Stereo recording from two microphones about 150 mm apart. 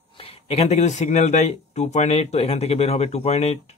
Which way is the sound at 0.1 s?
40° left (ahead or behind).